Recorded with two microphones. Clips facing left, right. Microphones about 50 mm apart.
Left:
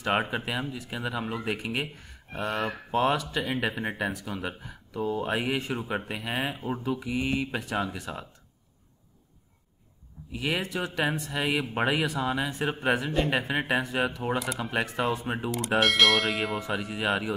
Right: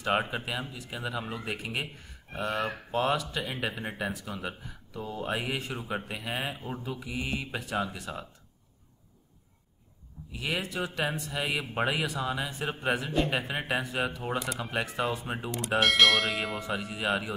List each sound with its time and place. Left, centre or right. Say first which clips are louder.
0.1 s speech: left 2 dB; centre
2.3 s speech: left 1 dB; centre
2.9 s speech: left 4 dB; centre
3.4 s speech: left 5 dB; centre
5.8 s speech: left 3 dB; centre
10.3 s speech: left 3 dB; centre
10.6 s bell: left 3 dB; centre
11.3 s speech: left 2 dB; centre
12.2 s speech: left 3 dB; centre
12.4 s bell: left 3 dB; centre
13.6 s speech: left 4 dB; centre
14.4 s bell: left 3 dB; centre